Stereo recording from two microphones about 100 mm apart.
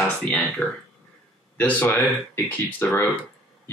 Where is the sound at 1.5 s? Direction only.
15° left (ahead or behind).